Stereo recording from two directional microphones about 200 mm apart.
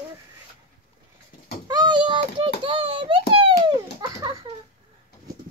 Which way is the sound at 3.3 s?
25° right (ahead or behind).